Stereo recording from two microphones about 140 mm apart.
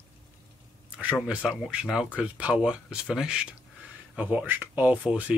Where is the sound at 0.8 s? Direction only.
10° right (ahead or behind).